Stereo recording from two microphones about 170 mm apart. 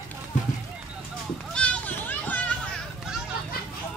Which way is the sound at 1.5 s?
10° left (ahead or behind).